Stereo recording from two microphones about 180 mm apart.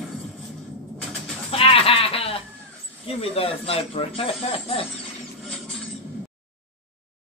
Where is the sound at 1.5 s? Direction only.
30° left (ahead or behind).